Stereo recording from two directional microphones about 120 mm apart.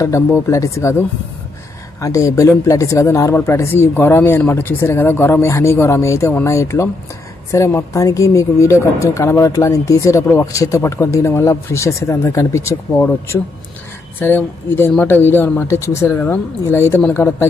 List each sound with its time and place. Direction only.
0.0 s speech: 25° left (ahead or behind)